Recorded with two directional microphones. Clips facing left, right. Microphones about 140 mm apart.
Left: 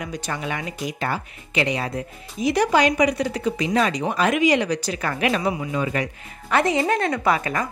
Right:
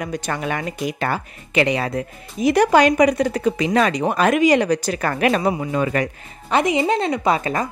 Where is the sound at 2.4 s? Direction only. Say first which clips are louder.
Right 4 dB; 55° right (ahead or behind).